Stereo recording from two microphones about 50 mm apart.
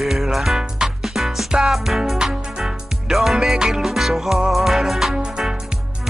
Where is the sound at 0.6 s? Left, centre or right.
Centre.